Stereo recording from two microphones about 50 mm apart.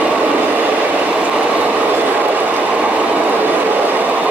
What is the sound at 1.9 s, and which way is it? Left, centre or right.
Train, right.